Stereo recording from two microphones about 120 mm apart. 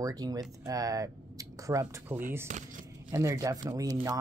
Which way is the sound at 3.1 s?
25° right (ahead or behind).